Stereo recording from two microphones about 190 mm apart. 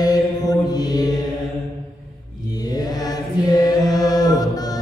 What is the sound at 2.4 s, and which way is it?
Chant, 20° left (ahead or behind).